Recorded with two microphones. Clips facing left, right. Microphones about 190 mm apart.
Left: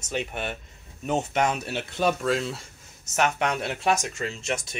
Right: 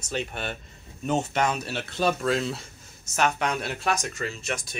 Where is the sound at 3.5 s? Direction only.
20° left (ahead or behind).